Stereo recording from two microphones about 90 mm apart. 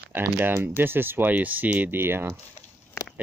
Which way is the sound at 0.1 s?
25° right (ahead or behind).